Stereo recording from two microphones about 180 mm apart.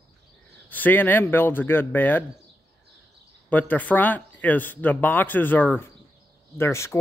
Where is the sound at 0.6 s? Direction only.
10° left (ahead or behind).